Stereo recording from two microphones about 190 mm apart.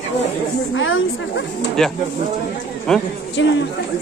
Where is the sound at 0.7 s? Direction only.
90° left.